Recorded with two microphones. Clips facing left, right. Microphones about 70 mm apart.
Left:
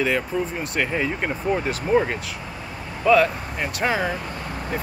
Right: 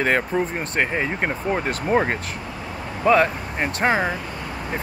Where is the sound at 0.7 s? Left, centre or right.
Right.